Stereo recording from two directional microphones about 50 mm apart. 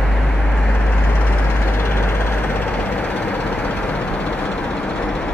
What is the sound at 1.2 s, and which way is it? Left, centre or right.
Vehicle, left.